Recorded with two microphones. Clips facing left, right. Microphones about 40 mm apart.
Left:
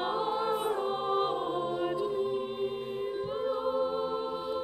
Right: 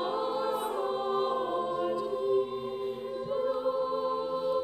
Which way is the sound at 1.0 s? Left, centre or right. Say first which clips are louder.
Left 2 dB; left.